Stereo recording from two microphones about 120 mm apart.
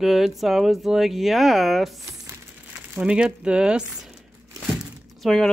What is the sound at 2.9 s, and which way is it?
Speech, 10° right (ahead or behind).